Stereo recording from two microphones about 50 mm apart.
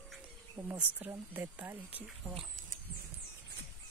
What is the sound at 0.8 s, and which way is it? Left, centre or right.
Speech, right.